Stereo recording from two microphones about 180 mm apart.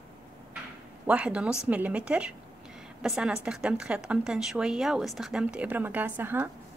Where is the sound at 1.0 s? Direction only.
5° right (ahead or behind).